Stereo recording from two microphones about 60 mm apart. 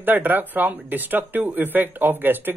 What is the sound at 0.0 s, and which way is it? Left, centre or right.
Speech, right.